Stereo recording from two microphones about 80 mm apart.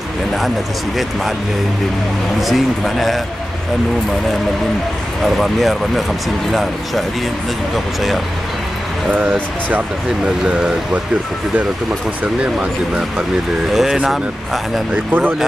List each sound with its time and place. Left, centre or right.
2.4 s speech: centre
5.2 s speech: centre
9.1 s speech: centre
13.7 s speech: centre